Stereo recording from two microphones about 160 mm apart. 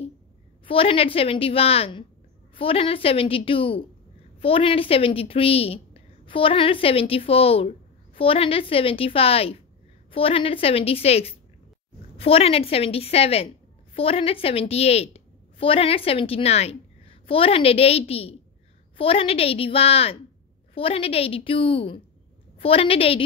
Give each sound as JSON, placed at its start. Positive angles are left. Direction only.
{"t": 0.7, "sound": "a woman's voice", "side_deg": 35}